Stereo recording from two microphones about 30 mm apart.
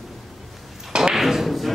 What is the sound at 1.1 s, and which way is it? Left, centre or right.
Thump, centre.